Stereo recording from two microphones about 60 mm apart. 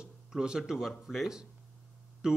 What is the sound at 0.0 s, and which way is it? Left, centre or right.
A man's voice, centre.